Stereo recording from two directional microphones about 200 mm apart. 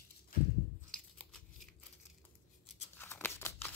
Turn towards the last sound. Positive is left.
turn(degrees=10)  # may be behind; listen again after turning